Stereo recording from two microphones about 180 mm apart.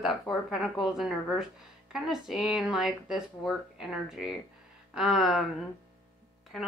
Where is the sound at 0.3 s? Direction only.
Centre (ahead or behind).